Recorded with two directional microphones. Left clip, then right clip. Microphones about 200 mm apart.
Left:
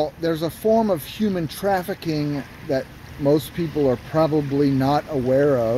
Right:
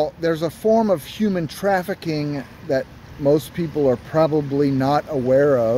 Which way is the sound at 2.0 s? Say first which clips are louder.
Even; 40° right (ahead or behind).